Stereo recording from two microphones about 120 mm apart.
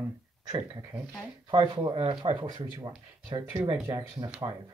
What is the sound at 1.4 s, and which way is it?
Speech, 40° right (ahead or behind).